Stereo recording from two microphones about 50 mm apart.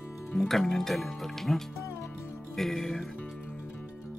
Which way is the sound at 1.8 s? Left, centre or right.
Left.